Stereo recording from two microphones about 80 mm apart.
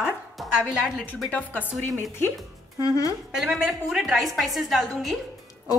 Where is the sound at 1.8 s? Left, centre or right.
Left.